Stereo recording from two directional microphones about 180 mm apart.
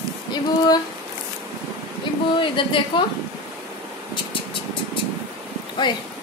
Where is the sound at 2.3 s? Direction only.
30° left (ahead or behind).